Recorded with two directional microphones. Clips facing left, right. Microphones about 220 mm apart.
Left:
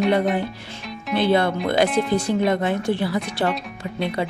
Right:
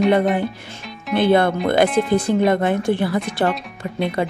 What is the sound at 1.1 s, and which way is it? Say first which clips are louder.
Speech: right 3 dB; 50° right (ahead or behind).